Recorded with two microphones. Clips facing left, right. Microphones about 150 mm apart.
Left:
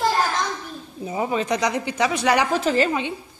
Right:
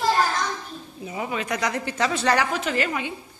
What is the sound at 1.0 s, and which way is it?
Speech, 30° left (ahead or behind).